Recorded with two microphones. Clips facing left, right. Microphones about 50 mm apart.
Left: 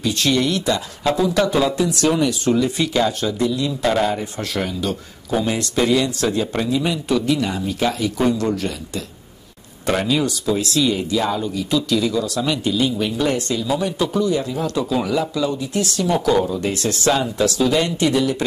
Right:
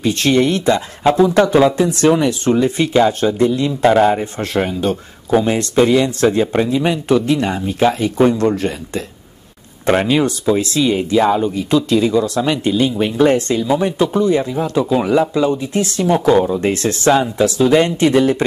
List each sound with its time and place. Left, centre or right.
0.0 s a man's voice: right
17.1 s a man's voice: right